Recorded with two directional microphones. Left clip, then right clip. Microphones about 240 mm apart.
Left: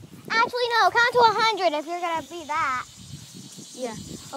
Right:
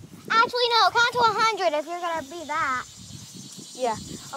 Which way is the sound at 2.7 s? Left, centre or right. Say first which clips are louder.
Even; left.